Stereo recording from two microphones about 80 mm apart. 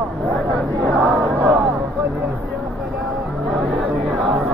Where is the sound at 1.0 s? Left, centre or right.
Right.